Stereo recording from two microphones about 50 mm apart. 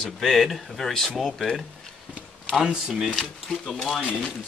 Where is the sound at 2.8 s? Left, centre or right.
Centre.